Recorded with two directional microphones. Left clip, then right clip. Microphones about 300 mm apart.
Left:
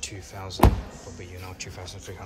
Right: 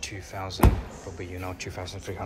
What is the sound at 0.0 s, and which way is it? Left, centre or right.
Speech, centre.